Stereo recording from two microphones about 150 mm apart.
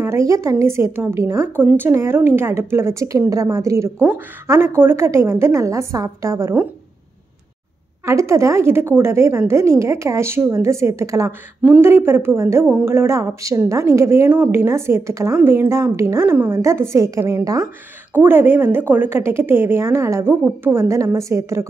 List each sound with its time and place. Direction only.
0.0 s a woman's voice: 20° right (ahead or behind)
8.0 s a woman's voice: 20° right (ahead or behind)